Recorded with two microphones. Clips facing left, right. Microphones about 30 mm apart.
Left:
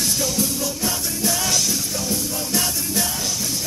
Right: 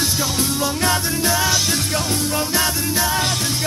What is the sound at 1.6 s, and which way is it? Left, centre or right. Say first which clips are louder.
Music: right 4 dB; right.